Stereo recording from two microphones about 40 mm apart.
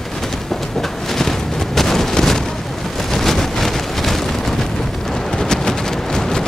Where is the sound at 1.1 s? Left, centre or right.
Centre.